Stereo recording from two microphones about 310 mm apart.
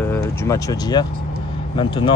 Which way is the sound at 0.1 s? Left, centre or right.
Centre.